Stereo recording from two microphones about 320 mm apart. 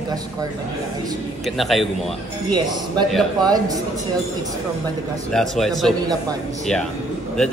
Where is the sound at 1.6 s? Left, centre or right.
Centre.